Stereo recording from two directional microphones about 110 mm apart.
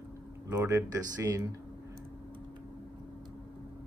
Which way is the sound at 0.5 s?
25° right (ahead or behind).